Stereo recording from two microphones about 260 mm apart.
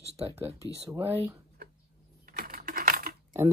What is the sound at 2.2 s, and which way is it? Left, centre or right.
Coin, right.